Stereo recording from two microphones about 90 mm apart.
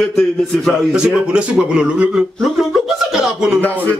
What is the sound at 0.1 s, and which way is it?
Speech, 5° left (ahead or behind).